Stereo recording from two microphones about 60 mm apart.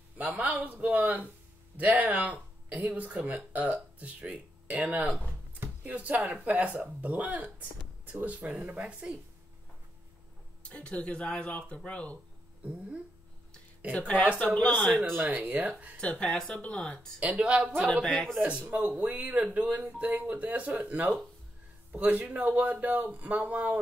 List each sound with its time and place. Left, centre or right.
0.2 s speech: centre
10.6 s speech: centre
13.9 s speech: left
14.9 s speech: centre
15.1 s speech: right
16.0 s speech: centre
17.2 s a man's voice: centre